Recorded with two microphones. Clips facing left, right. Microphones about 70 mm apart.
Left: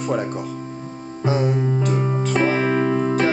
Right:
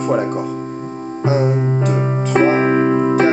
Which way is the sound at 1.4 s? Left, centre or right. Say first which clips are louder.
Right 3 dB; right.